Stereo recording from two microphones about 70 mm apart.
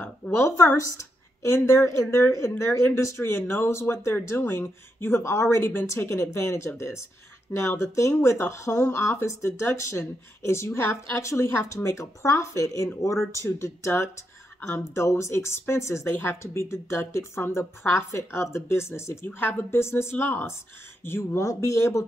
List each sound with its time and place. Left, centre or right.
0.4 s speech: left
5.6 s speech: left